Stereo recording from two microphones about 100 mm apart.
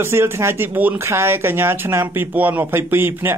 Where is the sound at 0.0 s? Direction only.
25° right (ahead or behind).